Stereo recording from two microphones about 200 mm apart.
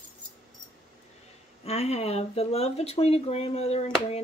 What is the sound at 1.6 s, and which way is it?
Speech, 30° left (ahead or behind).